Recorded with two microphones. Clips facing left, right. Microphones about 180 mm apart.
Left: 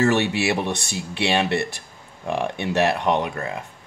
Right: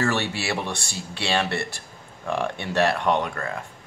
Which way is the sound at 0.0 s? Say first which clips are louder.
Left 6 dB; 20° left (ahead or behind).